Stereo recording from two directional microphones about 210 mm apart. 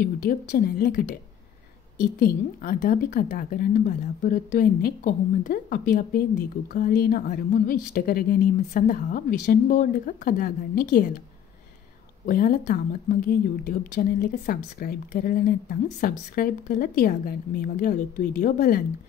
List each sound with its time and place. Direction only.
0.0 s a woman's voice: 45° left (ahead or behind)
2.1 s a woman's voice: 45° left (ahead or behind)
12.3 s a woman's voice: 40° left (ahead or behind)